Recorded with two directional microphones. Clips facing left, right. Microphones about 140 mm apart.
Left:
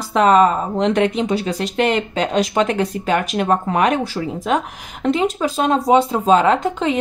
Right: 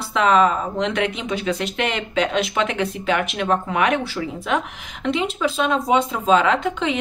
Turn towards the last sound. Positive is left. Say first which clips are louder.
# left 3 dB
turn(degrees=35)  # may be behind; listen again after turning